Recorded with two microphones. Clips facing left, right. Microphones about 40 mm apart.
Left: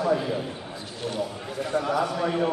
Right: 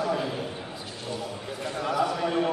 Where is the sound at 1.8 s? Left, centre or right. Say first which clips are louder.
Right 3 dB; centre.